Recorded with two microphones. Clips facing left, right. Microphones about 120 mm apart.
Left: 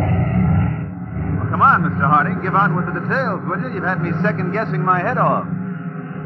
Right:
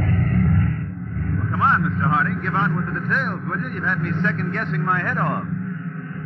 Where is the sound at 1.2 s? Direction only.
45° left (ahead or behind).